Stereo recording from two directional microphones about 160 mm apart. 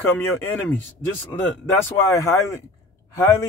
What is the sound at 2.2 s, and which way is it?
Speech, 15° left (ahead or behind).